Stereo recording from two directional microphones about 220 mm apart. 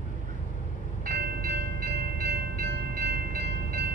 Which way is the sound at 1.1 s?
45° right (ahead or behind).